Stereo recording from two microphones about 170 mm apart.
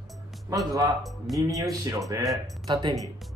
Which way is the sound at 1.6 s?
20° right (ahead or behind).